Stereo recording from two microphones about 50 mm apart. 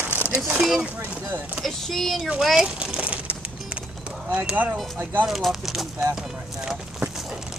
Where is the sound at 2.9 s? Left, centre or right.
Right.